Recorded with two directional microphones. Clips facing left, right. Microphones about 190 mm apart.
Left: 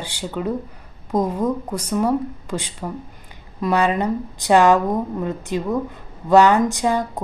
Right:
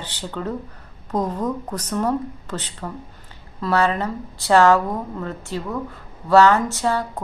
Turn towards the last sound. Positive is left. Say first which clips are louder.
# left 2 dB
turn(degrees=15)  # may be behind; listen again after turning